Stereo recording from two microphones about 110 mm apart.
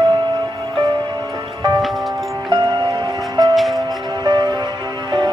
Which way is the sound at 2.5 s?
40° right (ahead or behind).